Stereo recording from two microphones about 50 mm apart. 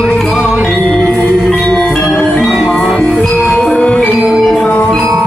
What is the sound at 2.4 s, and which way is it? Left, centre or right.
Music, centre.